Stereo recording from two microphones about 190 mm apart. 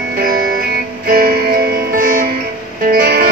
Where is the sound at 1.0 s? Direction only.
55° right (ahead or behind).